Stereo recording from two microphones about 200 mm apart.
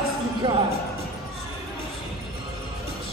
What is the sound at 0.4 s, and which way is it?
Speech, 25° right (ahead or behind).